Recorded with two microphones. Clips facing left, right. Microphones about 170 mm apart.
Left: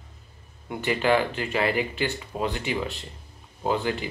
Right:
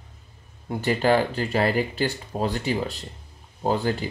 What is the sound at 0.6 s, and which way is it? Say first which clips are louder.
Speech: right 2 dB; 40° right (ahead or behind).